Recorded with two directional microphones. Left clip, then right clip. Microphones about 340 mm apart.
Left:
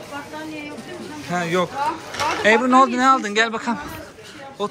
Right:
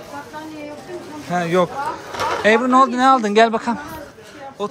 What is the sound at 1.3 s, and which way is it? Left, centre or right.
Speech, centre.